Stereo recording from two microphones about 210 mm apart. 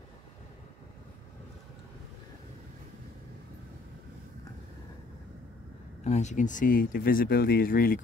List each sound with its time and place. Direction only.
6.0 s speech: 35° left (ahead or behind)